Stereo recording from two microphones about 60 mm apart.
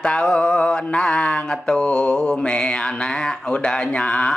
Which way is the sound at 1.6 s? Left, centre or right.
Centre.